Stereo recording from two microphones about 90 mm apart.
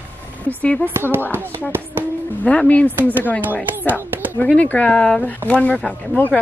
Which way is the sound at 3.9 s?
20° right (ahead or behind).